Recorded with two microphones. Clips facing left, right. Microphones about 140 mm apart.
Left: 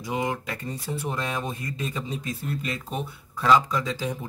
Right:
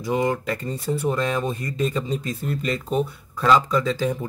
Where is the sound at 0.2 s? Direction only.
5° left (ahead or behind).